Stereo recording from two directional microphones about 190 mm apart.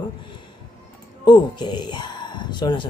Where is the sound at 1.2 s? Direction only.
25° left (ahead or behind).